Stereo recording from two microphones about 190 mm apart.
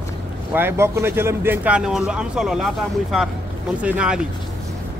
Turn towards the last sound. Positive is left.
turn(degrees=-5)  # may be behind; listen again after turning